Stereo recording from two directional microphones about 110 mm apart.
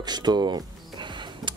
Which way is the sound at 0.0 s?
40° right (ahead or behind).